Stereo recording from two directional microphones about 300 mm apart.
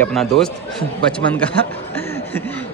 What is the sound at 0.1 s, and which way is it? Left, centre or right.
A man's voice, centre.